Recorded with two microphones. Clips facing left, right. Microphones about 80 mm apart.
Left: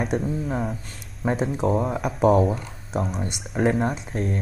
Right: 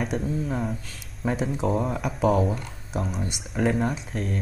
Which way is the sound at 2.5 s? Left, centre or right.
Centre.